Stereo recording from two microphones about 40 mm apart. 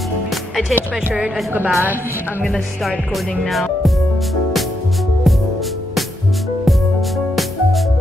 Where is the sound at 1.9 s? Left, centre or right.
Left.